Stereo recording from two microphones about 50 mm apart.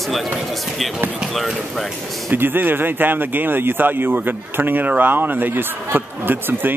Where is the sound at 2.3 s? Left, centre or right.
Right.